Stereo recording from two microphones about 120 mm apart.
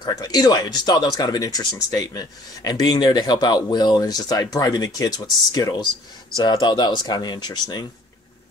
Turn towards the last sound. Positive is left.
turn(degrees=35)  # may be behind; listen again after turning